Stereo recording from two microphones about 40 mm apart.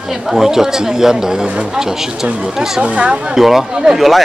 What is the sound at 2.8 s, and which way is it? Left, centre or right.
Speech, right.